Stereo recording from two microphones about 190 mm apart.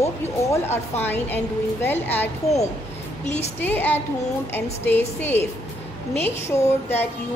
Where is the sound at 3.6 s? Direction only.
10° left (ahead or behind).